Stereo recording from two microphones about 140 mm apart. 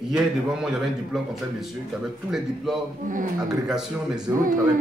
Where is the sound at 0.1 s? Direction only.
5° right (ahead or behind).